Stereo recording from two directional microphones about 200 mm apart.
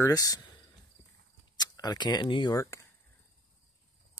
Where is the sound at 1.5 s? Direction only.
20° left (ahead or behind).